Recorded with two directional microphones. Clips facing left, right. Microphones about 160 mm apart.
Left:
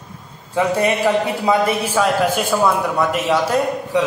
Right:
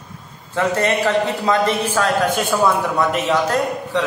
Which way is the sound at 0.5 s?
10° left (ahead or behind).